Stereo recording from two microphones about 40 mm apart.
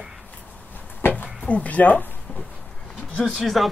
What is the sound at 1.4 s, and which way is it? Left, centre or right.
Speech, left.